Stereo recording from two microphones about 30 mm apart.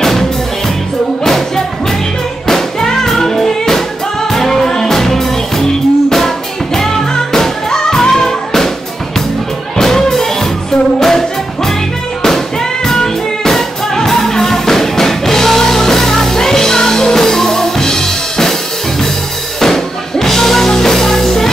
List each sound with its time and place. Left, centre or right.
2.4 s music: centre
9.8 s music: centre
12.8 s music: centre
19.6 s music: centre